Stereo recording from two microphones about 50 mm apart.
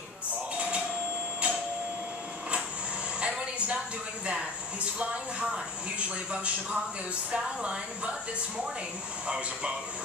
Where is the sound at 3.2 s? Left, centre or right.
Right.